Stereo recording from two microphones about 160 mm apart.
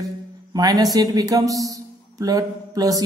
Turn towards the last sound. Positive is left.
turn(degrees=-20)  # may be behind; listen again after turning